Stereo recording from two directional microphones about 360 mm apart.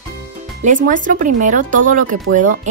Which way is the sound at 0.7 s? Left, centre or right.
Right.